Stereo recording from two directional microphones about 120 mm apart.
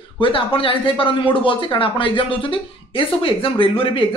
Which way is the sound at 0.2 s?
50° left (ahead or behind).